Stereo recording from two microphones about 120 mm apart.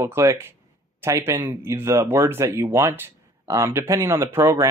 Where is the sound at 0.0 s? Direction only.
25° right (ahead or behind).